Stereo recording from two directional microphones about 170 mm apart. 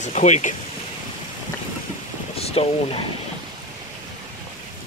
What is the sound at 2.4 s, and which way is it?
Speech, 35° left (ahead or behind).